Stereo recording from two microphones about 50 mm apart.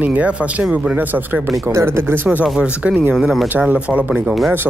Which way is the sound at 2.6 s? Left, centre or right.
Centre.